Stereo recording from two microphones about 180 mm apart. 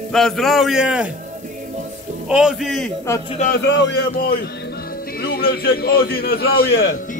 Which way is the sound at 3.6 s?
80° left.